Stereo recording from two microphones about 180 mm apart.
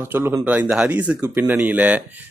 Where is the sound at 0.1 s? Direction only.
10° right (ahead or behind).